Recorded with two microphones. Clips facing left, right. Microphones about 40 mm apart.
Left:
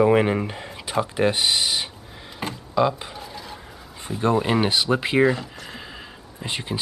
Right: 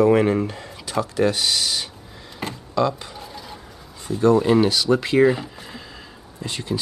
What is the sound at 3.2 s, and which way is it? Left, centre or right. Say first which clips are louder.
Stir: even; centre.